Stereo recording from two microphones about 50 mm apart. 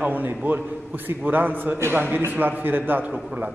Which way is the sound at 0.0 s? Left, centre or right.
Right.